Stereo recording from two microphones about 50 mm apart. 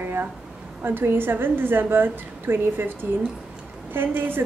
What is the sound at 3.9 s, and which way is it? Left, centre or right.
Speech, right.